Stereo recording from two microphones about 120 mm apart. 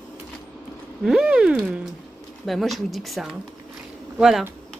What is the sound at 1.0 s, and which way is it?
A woman's voice, 5° right (ahead or behind).